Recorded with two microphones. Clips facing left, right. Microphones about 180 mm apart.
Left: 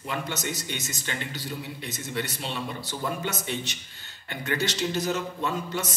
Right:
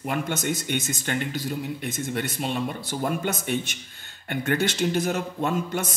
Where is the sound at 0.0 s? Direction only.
50° right (ahead or behind).